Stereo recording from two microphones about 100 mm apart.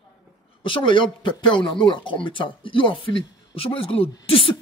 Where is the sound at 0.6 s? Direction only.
60° left (ahead or behind).